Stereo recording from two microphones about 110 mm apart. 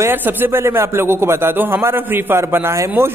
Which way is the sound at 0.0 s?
20° right (ahead or behind).